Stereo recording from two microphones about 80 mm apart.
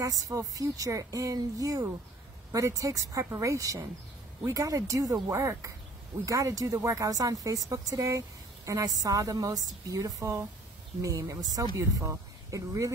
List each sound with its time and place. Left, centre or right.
0.0 s speech: right